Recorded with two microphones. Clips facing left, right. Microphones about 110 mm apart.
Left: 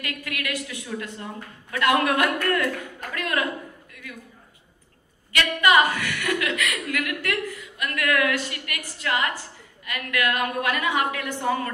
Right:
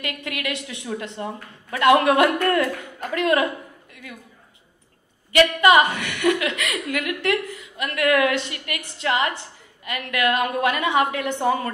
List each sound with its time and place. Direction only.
0.0 s a woman's voice: 25° right (ahead or behind)
5.3 s a woman's voice: 25° right (ahead or behind)